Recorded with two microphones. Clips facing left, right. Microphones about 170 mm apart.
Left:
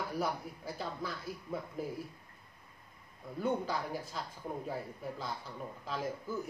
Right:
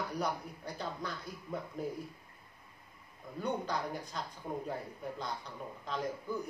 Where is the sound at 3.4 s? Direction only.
5° left (ahead or behind).